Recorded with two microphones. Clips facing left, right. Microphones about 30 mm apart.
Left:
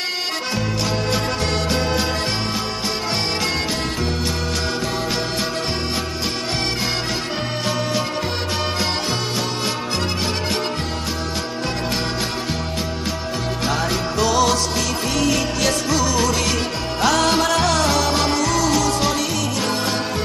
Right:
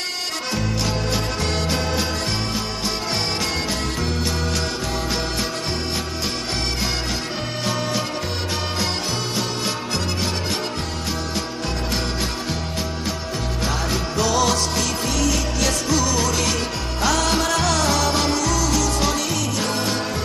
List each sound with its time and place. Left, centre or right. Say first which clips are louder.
1.7 s music: left 2 dB; centre
13.7 s music: left 3 dB; centre
15.1 s music: left 4 dB; centre